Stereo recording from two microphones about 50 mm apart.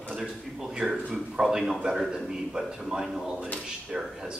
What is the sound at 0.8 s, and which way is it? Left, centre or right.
Speech, right.